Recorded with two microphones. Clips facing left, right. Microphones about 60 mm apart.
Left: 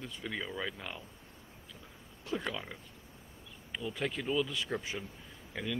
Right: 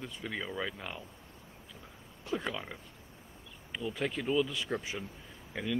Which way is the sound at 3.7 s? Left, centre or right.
Centre.